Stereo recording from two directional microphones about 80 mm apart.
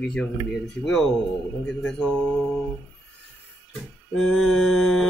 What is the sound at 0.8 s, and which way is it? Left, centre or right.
Speech, centre.